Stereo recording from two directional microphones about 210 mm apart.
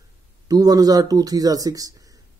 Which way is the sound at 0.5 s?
15° right (ahead or behind).